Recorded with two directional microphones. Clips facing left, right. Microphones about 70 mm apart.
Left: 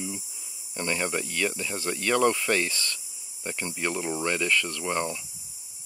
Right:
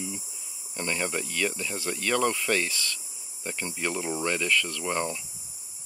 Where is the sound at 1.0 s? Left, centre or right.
Centre.